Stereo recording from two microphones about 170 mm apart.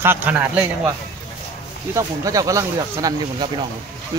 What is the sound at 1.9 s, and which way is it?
Speech, 20° right (ahead or behind).